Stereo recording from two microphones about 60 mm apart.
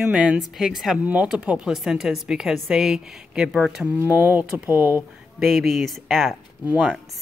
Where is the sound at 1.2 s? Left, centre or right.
Centre.